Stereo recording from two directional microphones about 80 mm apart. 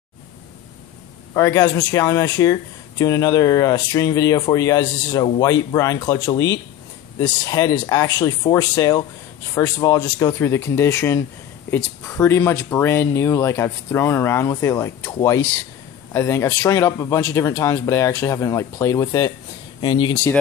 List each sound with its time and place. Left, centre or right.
1.3 s speech: left
2.0 s speech: left
10.4 s speech: left
12.1 s speech: left
16.1 s speech: left
19.8 s speech: left